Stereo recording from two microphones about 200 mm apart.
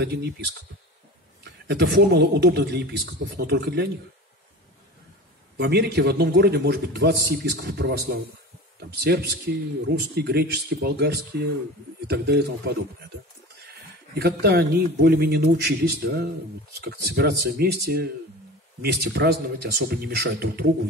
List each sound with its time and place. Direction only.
0.0 s speech: 55° right (ahead or behind)
1.7 s a man's voice: 55° right (ahead or behind)
5.6 s a man's voice: 55° right (ahead or behind)
14.4 s speech: 50° right (ahead or behind)